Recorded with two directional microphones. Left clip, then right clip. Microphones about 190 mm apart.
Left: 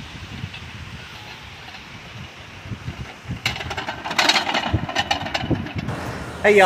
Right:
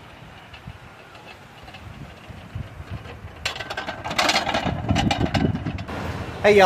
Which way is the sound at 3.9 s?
35° right (ahead or behind).